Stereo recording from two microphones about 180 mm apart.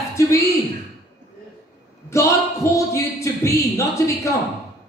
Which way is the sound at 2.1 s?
15° left (ahead or behind).